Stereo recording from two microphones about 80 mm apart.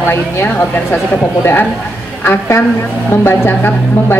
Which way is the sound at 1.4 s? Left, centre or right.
Left.